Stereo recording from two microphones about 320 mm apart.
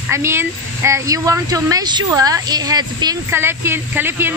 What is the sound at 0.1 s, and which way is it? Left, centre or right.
Speech, centre.